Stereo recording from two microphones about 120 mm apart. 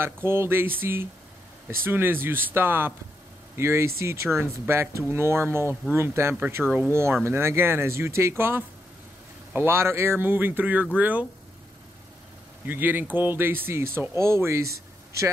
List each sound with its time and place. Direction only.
0.0 s speech: 20° right (ahead or behind)
12.6 s speech: 15° right (ahead or behind)